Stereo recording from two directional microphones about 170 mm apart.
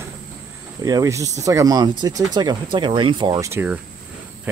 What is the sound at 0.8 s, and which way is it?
Speech, 20° right (ahead or behind).